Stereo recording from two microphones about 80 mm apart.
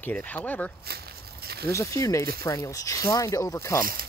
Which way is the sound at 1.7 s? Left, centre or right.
Left.